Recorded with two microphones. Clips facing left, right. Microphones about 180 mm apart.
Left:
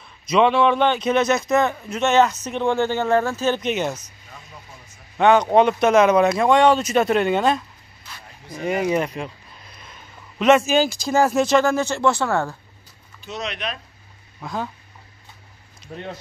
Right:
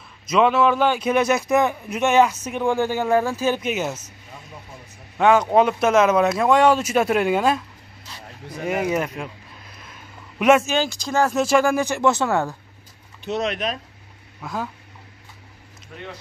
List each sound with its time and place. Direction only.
0.3 s speech: 5° right (ahead or behind)
5.1 s speech: 5° right (ahead or behind)
8.6 s speech: 5° right (ahead or behind)
10.4 s speech: 5° right (ahead or behind)
11.3 s speech: 10° right (ahead or behind)
13.2 s speech: 55° right (ahead or behind)
14.4 s speech: 5° right (ahead or behind)
15.9 s speech: 30° left (ahead or behind)